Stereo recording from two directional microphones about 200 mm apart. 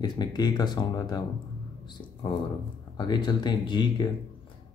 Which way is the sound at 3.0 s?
20° left (ahead or behind).